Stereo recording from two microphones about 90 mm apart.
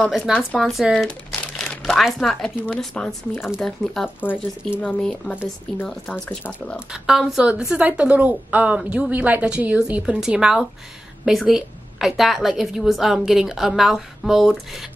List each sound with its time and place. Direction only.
0.1 s a woman's voice: centre (ahead or behind)
0.9 s crumpling: 10° left (ahead or behind)
2.1 s a woman's voice: 5° left (ahead or behind)
4.2 s speech: 20° left (ahead or behind)
4.8 s speech: 10° left (ahead or behind)
6.9 s a woman's voice: 5° right (ahead or behind)